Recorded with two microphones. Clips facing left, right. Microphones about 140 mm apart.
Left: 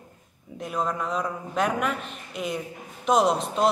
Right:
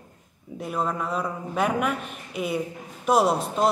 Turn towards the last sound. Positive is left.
turn(degrees=-5)  # may be behind; listen again after turning